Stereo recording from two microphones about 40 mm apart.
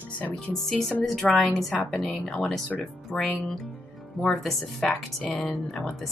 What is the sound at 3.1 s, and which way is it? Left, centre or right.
Speech, left.